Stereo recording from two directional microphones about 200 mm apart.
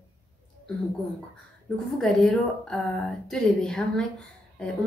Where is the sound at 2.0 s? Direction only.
Centre (ahead or behind).